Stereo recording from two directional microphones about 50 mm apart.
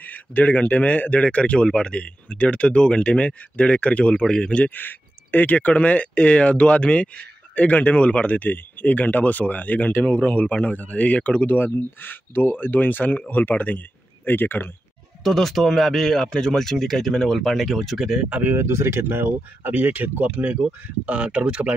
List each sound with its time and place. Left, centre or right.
0.0 s speech: left; by 4.6 s centre
4.6 s speech: left
12.0 s speech: left
15.2 s speech: centre
18.5 s speech: right
19.7 s speech: right